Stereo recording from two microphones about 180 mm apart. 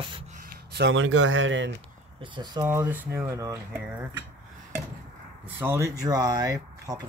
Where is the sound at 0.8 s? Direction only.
90° right.